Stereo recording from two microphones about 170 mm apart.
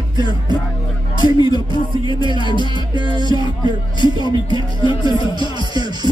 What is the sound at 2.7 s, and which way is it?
Music, 25° right (ahead or behind).